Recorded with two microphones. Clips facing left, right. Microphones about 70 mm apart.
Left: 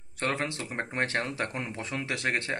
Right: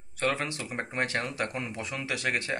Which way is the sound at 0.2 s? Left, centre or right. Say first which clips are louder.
Right 1 dB; left.